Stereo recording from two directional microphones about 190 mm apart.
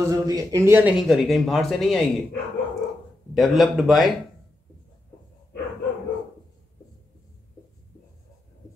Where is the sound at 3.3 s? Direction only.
Centre (ahead or behind).